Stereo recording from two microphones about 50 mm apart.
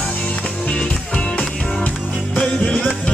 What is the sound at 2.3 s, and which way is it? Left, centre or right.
Music, centre.